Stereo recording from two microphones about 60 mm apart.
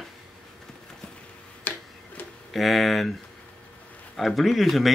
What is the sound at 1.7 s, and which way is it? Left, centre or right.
Tick-tock, left.